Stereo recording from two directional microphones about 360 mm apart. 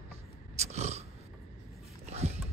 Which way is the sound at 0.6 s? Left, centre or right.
Centre.